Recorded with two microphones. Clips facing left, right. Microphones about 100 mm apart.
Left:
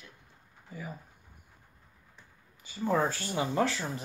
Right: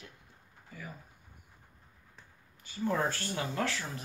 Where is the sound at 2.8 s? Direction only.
5° left (ahead or behind).